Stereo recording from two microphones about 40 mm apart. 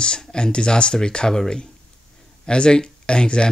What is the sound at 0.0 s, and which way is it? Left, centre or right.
Speech, left.